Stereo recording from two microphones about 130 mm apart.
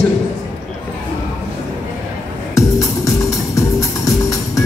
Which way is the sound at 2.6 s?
25° left (ahead or behind).